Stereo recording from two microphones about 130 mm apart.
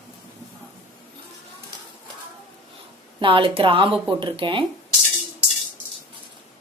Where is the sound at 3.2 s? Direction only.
40° right (ahead or behind).